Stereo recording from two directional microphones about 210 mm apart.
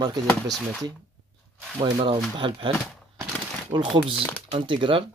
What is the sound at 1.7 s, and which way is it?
Speech, 20° right (ahead or behind).